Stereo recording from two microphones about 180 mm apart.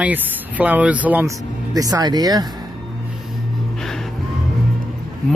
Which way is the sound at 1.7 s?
20° right (ahead or behind).